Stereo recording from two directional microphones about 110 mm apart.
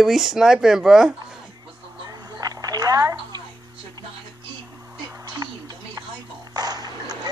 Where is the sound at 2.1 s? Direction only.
35° right (ahead or behind).